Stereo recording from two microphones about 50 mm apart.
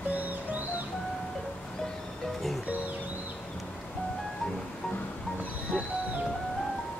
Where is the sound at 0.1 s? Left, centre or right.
Right.